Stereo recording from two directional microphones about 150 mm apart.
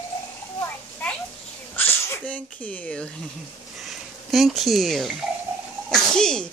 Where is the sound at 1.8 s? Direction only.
10° left (ahead or behind).